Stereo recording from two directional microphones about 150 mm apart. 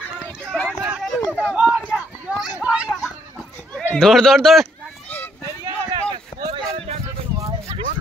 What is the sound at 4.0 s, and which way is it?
Speech, centre (ahead or behind).